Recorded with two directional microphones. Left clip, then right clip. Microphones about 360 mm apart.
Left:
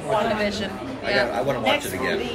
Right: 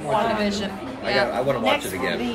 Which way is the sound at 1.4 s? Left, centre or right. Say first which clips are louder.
Right 1 dB; right.